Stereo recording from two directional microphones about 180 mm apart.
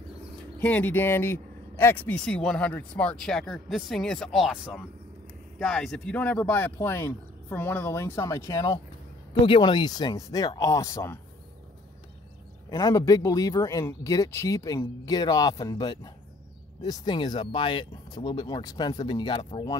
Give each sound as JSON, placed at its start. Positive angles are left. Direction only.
{"t": 0.6, "sound": "speech", "side_deg": 10}
{"t": 5.6, "sound": "a man's voice", "side_deg": 5}
{"t": 12.6, "sound": "a man's voice", "side_deg": 20}